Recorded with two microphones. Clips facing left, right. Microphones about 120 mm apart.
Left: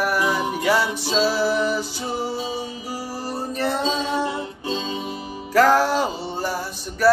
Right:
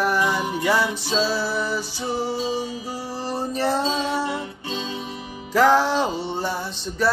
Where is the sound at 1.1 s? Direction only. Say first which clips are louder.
Left 6 dB; 15° left (ahead or behind).